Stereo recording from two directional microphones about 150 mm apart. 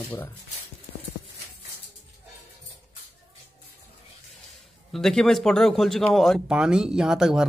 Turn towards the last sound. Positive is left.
turn(degrees=-5)  # may be behind; listen again after turning